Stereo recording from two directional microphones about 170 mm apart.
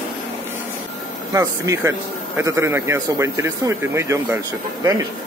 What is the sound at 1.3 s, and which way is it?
Speech, 15° right (ahead or behind).